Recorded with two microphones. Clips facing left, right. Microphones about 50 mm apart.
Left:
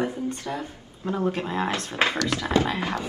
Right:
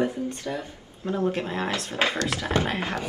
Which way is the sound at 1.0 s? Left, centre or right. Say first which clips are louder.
Even; left.